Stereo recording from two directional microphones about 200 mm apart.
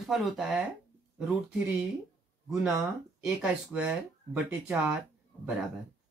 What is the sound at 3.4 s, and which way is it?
Speech, 5° right (ahead or behind).